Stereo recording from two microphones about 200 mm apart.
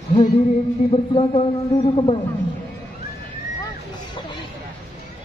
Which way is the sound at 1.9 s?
25° left (ahead or behind).